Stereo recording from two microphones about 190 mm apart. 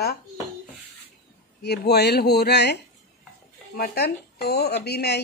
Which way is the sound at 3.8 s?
55° left (ahead or behind).